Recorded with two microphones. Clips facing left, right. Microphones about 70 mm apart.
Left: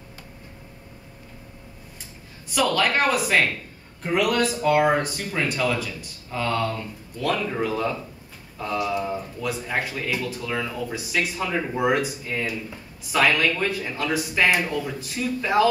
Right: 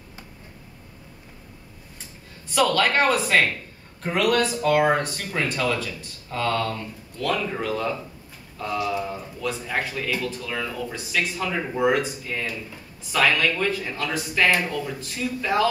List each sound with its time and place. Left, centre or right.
2.5 s speech: centre
9.0 s speech: centre